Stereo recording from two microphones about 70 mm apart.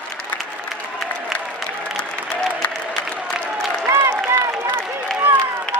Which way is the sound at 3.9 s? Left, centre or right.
Right.